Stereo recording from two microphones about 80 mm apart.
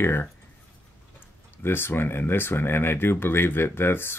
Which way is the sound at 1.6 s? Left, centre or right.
Left.